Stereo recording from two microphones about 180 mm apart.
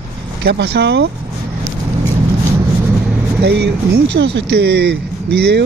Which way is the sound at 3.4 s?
70° right (ahead or behind).